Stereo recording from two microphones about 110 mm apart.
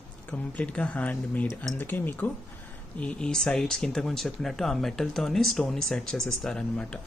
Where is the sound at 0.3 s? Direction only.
10° left (ahead or behind).